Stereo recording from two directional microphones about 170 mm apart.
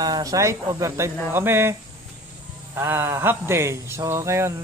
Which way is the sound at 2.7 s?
15° right (ahead or behind).